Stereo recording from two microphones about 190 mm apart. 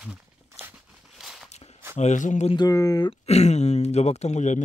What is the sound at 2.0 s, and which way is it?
Speech, 40° left (ahead or behind).